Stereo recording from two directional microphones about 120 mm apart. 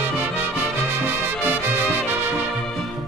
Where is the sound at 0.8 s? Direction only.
15° right (ahead or behind).